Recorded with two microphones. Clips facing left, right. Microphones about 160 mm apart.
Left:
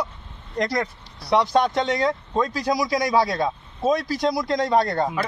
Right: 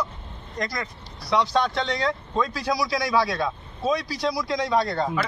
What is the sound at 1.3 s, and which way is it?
Speech, 50° left (ahead or behind).